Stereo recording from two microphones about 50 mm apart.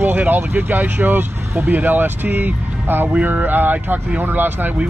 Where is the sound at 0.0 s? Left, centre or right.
Right.